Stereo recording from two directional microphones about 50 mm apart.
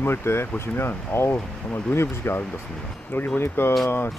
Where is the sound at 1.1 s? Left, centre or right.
Left.